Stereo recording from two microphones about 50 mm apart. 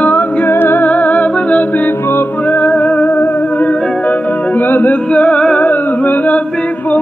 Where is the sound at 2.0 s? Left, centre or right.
Left.